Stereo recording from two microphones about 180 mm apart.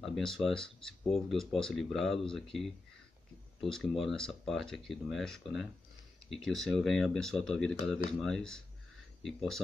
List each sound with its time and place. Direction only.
0.0 s speech: centre (ahead or behind)
4.0 s speech: centre (ahead or behind)